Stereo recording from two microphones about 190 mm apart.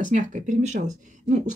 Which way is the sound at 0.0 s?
40° right (ahead or behind).